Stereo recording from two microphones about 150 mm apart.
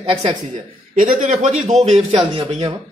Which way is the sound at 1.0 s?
60° right (ahead or behind).